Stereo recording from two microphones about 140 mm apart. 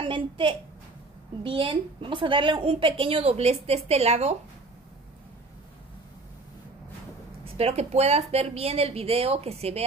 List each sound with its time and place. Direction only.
0.0 s a child's voice: 35° right (ahead or behind)
7.5 s speech: 50° right (ahead or behind)